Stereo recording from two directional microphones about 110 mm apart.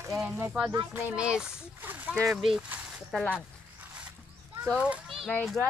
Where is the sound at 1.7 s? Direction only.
15° right (ahead or behind).